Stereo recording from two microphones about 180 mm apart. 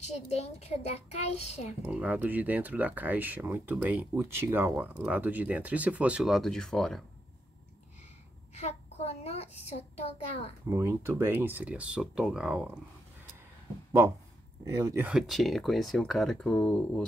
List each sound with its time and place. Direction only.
0.0 s a child's voice: 35° left (ahead or behind)
1.9 s speech: 10° right (ahead or behind)
8.5 s a sound: 35° left (ahead or behind)
10.7 s speech: 15° right (ahead or behind)
14.6 s speech: 20° right (ahead or behind)
15.0 s speech: centre (ahead or behind)